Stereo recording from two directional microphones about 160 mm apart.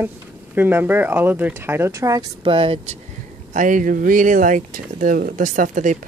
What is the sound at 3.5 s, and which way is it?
Speech, 55° right (ahead or behind).